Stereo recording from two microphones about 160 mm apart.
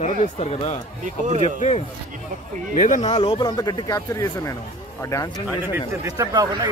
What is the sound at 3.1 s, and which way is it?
Speech, 30° left (ahead or behind).